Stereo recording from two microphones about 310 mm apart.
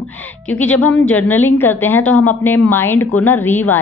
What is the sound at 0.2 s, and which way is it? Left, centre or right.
A woman's voice, centre.